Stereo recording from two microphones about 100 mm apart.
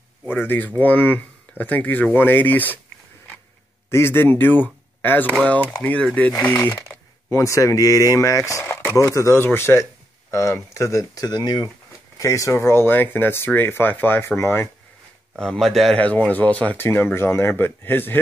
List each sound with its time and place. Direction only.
0.3 s speech: 20° left (ahead or behind)
3.9 s speech: 25° left (ahead or behind)
15.3 s a man's voice: 5° left (ahead or behind)
16.0 s speech: 15° left (ahead or behind)